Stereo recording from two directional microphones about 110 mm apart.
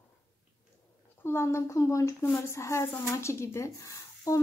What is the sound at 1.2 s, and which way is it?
A woman's voice, 25° left (ahead or behind).